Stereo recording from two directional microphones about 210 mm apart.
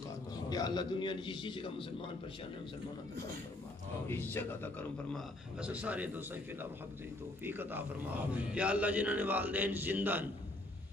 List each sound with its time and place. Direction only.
0.5 s a man's voice: 20° left (ahead or behind)
4.1 s speech: 10° left (ahead or behind)
5.6 s a man's voice: 5° right (ahead or behind)